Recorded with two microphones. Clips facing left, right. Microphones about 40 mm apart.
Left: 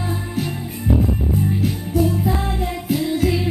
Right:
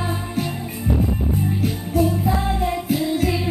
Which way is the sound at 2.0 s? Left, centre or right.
Centre.